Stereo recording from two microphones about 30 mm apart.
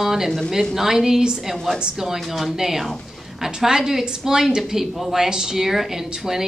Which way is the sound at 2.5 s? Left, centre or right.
Centre.